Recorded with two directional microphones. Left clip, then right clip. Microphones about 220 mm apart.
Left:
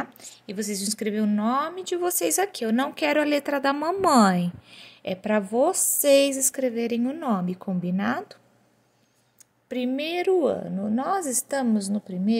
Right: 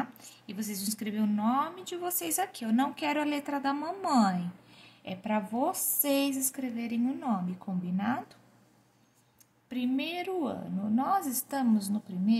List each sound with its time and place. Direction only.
0.0 s speech: 35° left (ahead or behind)
9.7 s speech: 35° left (ahead or behind)